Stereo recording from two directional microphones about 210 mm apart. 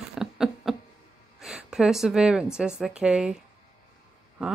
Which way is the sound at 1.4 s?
5° right (ahead or behind).